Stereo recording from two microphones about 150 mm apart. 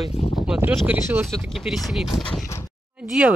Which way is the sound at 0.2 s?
45° left (ahead or behind).